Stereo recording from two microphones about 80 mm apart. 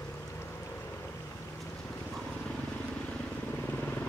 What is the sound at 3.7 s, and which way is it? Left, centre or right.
Vehicle, centre.